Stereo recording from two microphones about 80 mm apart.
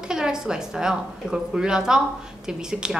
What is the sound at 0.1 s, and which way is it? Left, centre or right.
A woman's voice, centre.